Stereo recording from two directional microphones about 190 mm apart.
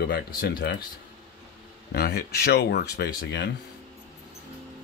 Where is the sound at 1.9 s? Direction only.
55° left (ahead or behind).